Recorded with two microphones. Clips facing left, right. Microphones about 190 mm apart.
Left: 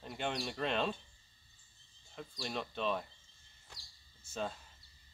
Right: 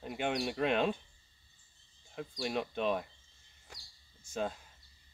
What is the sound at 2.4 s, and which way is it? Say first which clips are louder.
Speech: right 5 dB; 10° right (ahead or behind).